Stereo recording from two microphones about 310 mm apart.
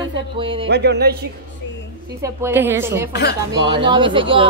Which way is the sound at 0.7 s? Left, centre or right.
Right.